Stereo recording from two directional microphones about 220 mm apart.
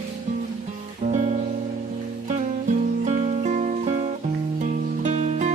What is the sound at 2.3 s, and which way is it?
Music, 30° right (ahead or behind).